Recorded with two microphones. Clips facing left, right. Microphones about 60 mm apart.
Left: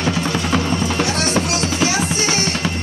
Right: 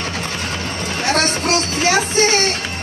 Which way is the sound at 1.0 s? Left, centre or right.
Right.